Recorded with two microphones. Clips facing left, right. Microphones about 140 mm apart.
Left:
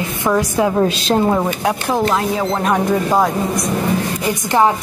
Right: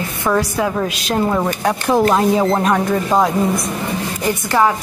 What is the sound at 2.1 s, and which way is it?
Speech, 20° right (ahead or behind).